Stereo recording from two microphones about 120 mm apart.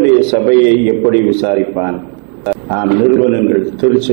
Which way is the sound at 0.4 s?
15° right (ahead or behind).